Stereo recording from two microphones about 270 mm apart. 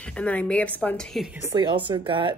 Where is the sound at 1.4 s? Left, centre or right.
Centre.